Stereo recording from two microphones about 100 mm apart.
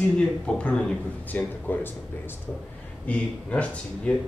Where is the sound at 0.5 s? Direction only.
10° left (ahead or behind).